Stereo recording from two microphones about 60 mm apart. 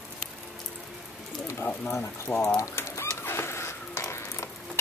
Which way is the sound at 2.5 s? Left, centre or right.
Left.